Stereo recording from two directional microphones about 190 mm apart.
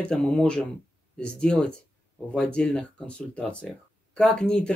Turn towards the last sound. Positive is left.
turn(degrees=5)  # may be behind; listen again after turning